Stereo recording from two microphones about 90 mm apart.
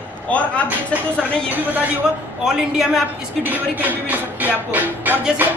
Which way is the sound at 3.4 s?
20° right (ahead or behind).